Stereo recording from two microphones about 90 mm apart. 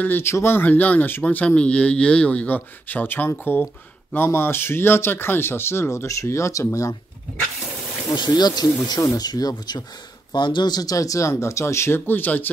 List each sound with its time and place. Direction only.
0.0 s a man's voice: 25° left (ahead or behind)
8.1 s speech: 50° left (ahead or behind); by 12.4 s 20° left (ahead or behind)